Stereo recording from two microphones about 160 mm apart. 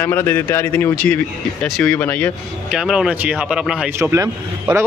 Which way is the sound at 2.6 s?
5° right (ahead or behind).